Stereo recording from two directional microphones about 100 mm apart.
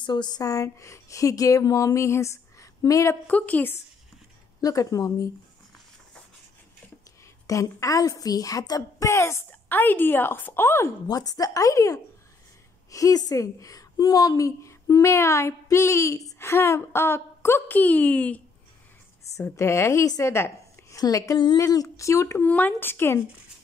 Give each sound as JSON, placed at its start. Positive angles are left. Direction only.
{"t": 0.0, "sound": "a woman's voice", "side_deg": 45}
{"t": 3.3, "sound": "a woman's voice", "side_deg": 15}
{"t": 4.6, "sound": "a woman's voice", "side_deg": 35}
{"t": 7.4, "sound": "a woman's voice", "side_deg": 35}
{"t": 9.5, "sound": "a woman's voice", "side_deg": 20}
{"t": 11.1, "sound": "a woman's voice", "side_deg": 40}
{"t": 19.5, "sound": "a woman's voice", "side_deg": 25}
{"t": 22.5, "sound": "a woman's voice", "side_deg": 15}